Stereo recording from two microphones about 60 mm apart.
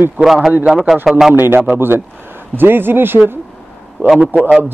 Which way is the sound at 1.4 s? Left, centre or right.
Right.